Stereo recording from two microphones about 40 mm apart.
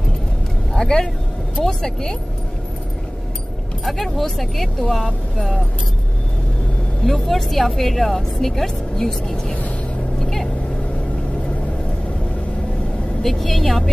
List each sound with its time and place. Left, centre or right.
0.7 s a woman's voice: centre
3.8 s a woman's voice: centre
7.1 s a woman's voice: centre
10.1 s vehicle: centre
13.2 s speech: centre